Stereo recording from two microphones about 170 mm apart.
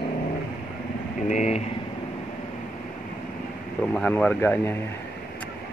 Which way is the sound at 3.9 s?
5° left (ahead or behind).